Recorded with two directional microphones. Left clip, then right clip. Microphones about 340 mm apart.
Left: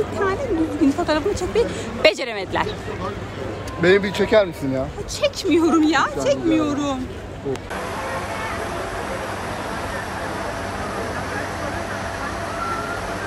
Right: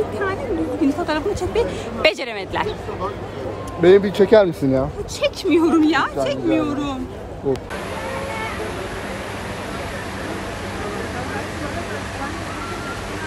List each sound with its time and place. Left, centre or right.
0.8 s speech: centre
3.8 s speech: right
5.2 s speech: centre